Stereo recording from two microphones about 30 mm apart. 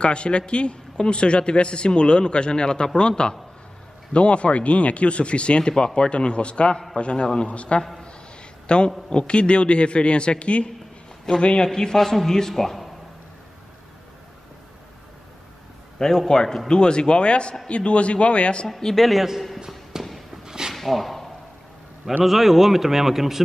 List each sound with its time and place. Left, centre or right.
0.0 s a man's voice: left
4.1 s a man's voice: left; by 12.9 s centre
16.0 s a man's voice: centre; by 18.7 s left
18.9 s a man's voice: centre
20.0 s fireworks: centre
20.4 s dog: right
20.7 s a sound: centre
22.2 s speech: centre